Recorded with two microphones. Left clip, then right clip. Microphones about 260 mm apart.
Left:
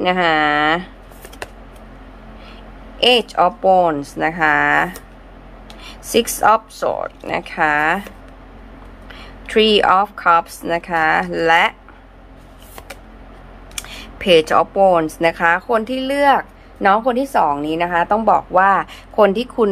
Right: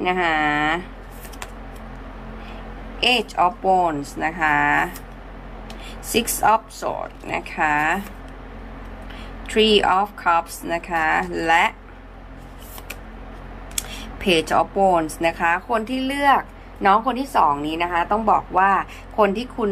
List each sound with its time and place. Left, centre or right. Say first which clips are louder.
0.0 s speech: left 5 dB; left
3.0 s a woman's voice: left 5 dB; centre
9.5 s a woman's voice: left 4 dB; centre
13.7 s speech: left 2 dB; centre